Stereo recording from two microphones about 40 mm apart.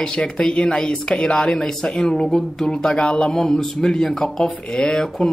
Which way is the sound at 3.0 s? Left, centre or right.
Left.